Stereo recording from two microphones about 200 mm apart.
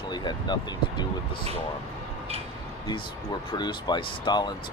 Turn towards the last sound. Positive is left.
turn(degrees=20)  # may be behind; listen again after turning